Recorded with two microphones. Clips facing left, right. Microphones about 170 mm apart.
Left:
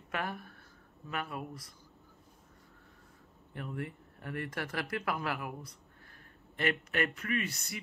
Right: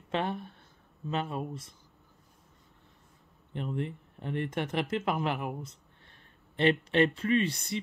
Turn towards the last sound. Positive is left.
turn(degrees=-30)  # may be behind; listen again after turning